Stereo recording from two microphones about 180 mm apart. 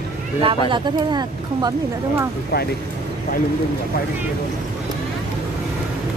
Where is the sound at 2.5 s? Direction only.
60° left (ahead or behind).